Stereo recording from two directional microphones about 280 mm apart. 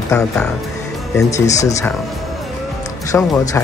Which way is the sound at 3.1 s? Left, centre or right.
Centre.